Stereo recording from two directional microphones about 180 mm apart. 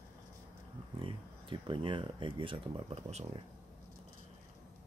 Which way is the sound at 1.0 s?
30° right (ahead or behind).